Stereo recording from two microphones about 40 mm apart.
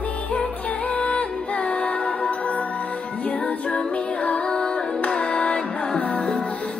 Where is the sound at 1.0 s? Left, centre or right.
Left.